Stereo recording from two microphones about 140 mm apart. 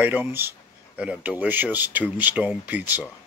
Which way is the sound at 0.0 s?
15° right (ahead or behind).